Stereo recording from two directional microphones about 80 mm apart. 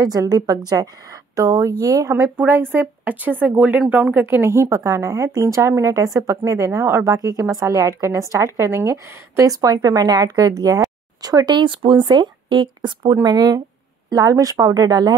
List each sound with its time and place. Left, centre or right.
0.0 s a woman's voice: right
2.3 s a woman's voice: right
6.3 s a woman's voice: right
7.1 s a woman's voice: right